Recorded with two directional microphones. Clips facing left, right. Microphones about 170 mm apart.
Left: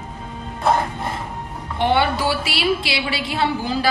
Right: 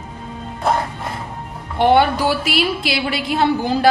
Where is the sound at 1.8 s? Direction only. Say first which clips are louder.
Right 5 dB; 50° right (ahead or behind).